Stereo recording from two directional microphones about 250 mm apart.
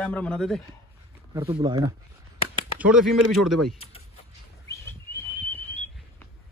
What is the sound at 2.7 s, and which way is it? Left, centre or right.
Speech, centre.